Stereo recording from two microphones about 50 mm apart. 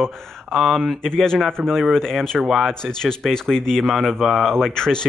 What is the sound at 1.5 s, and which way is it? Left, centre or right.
Speech, centre.